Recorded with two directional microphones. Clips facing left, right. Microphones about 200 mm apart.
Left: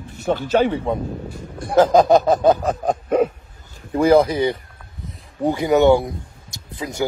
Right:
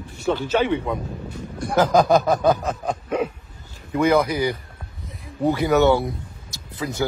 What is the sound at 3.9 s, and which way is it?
Speech, 30° left (ahead or behind).